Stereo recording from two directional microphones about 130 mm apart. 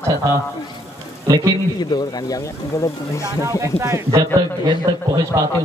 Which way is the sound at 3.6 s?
20° right (ahead or behind).